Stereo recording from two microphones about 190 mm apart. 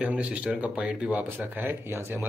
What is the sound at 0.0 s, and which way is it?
Speech, 5° right (ahead or behind).